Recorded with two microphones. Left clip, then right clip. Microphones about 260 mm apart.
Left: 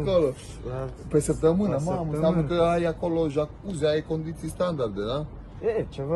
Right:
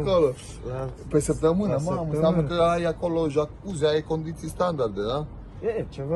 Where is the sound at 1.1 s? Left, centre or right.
Right; by 5.2 s centre.